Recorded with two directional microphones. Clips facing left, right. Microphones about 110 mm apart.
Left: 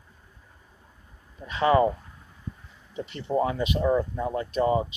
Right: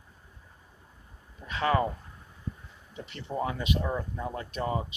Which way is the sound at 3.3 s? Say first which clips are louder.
Left 5 dB; 15° left (ahead or behind).